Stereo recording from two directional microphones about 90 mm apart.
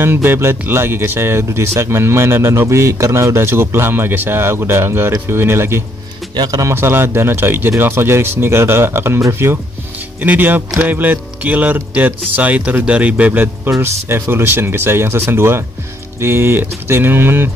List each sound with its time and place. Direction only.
0.0 s speech: 25° right (ahead or behind)
6.3 s speech: 45° right (ahead or behind)
6.7 s speech: 25° right (ahead or behind)
13.7 s speech: 30° right (ahead or behind)